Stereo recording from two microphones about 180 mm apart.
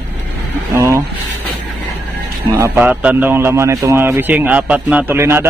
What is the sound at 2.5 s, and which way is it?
A man's voice, 15° right (ahead or behind).